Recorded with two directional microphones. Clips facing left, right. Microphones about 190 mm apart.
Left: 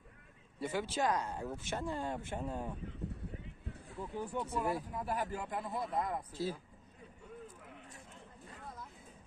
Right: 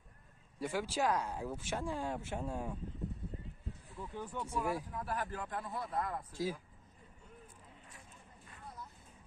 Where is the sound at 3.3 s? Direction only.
75° left (ahead or behind).